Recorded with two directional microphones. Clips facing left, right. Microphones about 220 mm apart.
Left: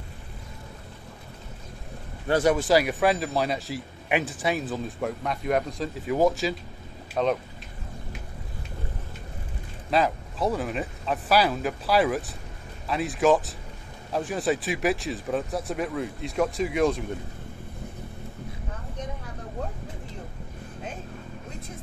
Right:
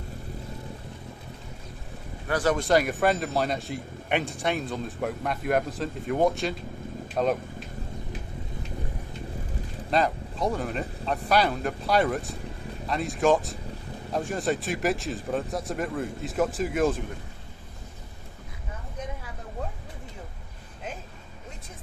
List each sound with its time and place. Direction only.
2.2 s speech: 25° left (ahead or behind)
2.5 s a man's voice: centre (ahead or behind)
9.8 s a man's voice: centre (ahead or behind)